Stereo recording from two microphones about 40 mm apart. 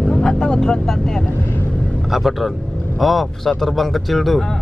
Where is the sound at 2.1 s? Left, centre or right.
Centre.